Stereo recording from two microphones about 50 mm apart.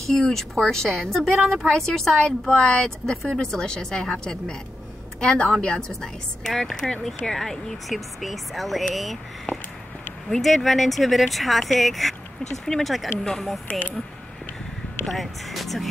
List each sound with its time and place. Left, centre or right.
0.0 s speech: centre
7.9 s speech: centre
9.5 s a sound: left
10.4 s speech: centre
15.0 s speech: centre